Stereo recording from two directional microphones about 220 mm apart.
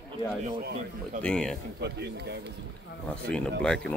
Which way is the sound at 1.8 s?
50° right (ahead or behind).